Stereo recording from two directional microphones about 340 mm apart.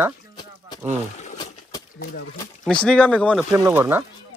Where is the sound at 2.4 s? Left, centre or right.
Centre.